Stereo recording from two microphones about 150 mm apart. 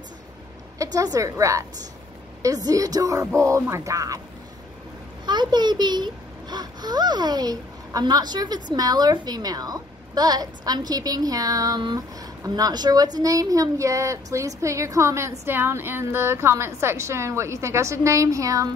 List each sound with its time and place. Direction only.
0.9 s a child's voice: 25° right (ahead or behind)
5.2 s a child's voice: 30° right (ahead or behind)